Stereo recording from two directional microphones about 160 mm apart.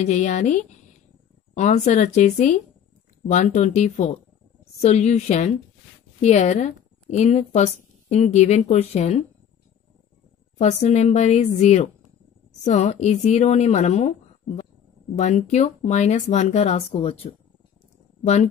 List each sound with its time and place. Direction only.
0.0 s a woman's voice: 50° left (ahead or behind)
10.6 s a woman's voice: 45° left (ahead or behind)